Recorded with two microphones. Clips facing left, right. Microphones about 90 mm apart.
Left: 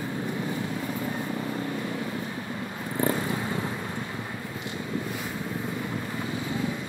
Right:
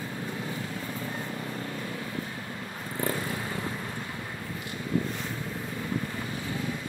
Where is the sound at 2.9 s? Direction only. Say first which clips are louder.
Left 4 dB; 20° left (ahead or behind).